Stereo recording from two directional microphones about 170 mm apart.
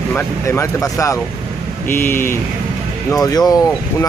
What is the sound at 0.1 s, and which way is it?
Speech, 15° left (ahead or behind).